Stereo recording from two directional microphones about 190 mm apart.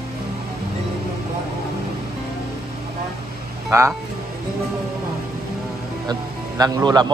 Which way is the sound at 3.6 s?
15° right (ahead or behind).